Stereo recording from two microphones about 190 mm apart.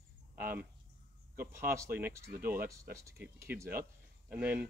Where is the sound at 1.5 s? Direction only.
15° right (ahead or behind).